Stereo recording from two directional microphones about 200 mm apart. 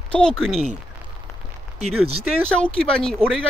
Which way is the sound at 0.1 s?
5° left (ahead or behind).